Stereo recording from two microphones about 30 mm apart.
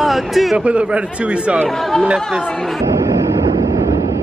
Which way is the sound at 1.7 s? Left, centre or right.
Centre.